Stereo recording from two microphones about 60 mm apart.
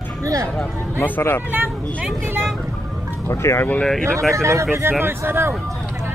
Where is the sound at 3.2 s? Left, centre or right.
Left.